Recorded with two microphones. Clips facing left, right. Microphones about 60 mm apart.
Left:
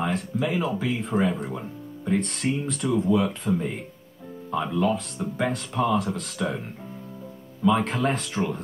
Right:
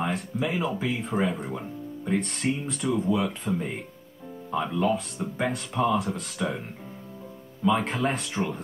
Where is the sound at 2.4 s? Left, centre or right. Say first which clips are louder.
Left 1 dB; centre.